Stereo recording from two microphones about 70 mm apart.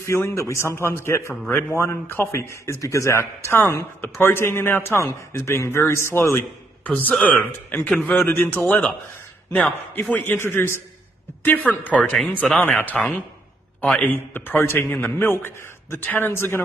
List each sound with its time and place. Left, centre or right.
0.0 s speech: left
5.0 s speech: left
6.8 s a man's voice: left
8.1 s a man's voice: left
10.1 s speech: left
11.4 s a man's voice: left
14.0 s a man's voice: left